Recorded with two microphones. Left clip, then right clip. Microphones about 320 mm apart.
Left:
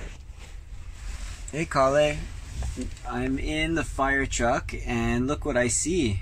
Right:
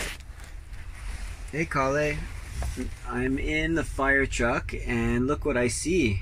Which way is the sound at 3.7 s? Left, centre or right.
Centre.